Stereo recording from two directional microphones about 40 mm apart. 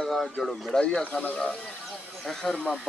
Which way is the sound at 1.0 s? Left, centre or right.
Left.